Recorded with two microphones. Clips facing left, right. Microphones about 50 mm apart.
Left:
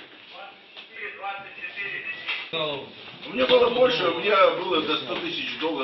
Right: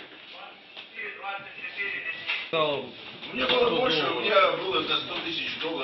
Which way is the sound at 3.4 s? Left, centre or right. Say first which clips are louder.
Left 5 dB; left.